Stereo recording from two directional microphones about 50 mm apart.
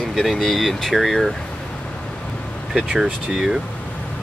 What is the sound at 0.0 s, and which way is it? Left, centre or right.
Speech, centre.